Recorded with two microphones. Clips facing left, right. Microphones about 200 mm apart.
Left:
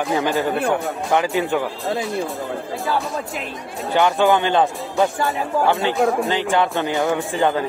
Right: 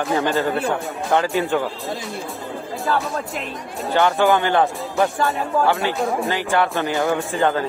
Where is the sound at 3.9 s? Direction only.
15° left (ahead or behind).